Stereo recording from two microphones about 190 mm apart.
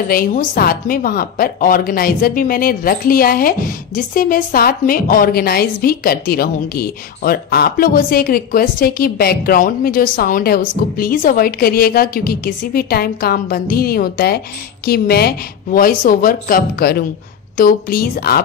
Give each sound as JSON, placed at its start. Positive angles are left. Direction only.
{"t": 0.1, "sound": "a woman's voice", "side_deg": 45}